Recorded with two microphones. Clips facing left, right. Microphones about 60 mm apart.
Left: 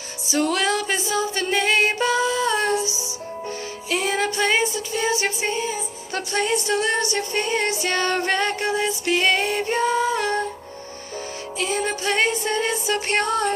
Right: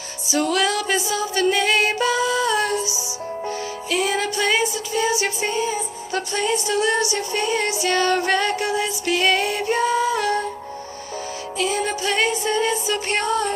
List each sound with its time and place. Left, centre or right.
0.3 s music: left
11.5 s music: left